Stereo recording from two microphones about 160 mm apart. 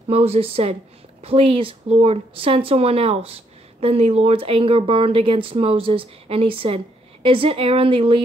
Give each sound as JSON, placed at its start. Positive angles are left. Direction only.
{"t": 0.1, "sound": "speech", "side_deg": -40}